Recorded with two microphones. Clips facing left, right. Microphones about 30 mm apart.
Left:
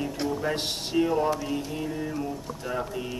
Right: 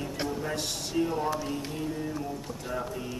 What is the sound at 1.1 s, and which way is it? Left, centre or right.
Speech, centre.